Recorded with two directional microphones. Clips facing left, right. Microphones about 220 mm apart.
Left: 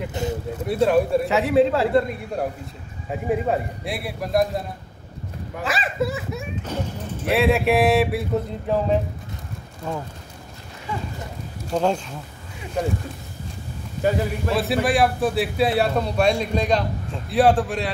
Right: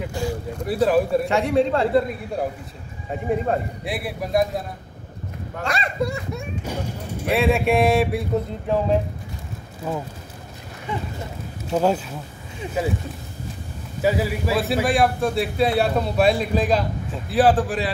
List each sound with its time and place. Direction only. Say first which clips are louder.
0.1 s a sound: even; 20° left (ahead or behind)
0.6 s a man's voice: even; centre (ahead or behind)
6.7 s music: left 2 dB; 10° right (ahead or behind)
7.2 s a man's voice: even; centre (ahead or behind)
11.7 s a man's voice: right 2 dB; 5° right (ahead or behind)
14.0 s a man's voice: right 1 dB; 5° right (ahead or behind)